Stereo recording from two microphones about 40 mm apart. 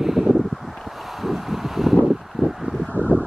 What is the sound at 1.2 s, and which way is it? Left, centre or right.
Wind, centre.